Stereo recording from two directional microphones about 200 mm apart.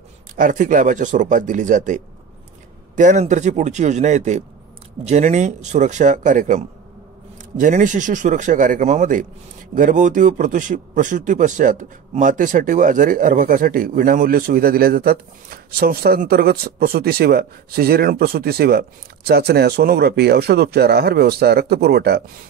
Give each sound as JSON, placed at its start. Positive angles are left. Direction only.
{"t": 0.4, "sound": "speech", "side_deg": -40}